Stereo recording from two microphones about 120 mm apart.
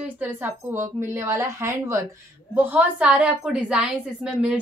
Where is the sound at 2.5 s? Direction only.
15° right (ahead or behind).